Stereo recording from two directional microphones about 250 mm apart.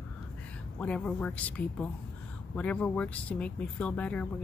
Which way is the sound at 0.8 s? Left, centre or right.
Centre.